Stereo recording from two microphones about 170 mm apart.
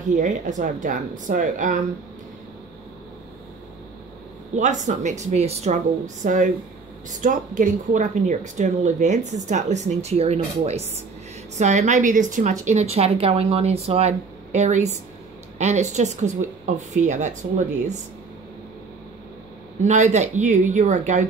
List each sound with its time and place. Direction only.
0.1 s a woman's voice: 45° right (ahead or behind)
4.6 s a woman's voice: 45° right (ahead or behind)
19.8 s a woman's voice: 45° right (ahead or behind)